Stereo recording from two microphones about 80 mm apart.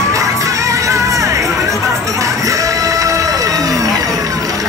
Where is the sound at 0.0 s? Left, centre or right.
Right.